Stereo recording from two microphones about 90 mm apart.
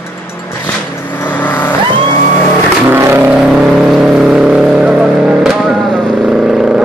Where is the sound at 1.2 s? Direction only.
20° left (ahead or behind).